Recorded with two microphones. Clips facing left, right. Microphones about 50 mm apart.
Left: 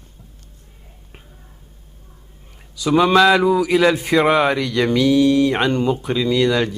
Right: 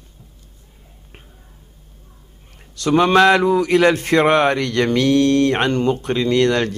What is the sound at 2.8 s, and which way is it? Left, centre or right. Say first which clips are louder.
Speech: even; centre.